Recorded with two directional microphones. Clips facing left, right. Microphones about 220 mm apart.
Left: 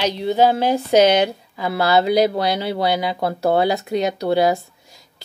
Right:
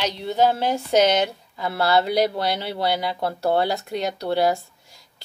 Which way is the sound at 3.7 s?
15° left (ahead or behind).